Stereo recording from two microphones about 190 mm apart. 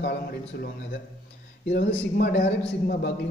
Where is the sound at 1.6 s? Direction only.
70° left (ahead or behind).